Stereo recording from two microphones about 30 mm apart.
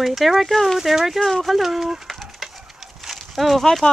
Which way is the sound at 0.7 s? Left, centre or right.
Centre.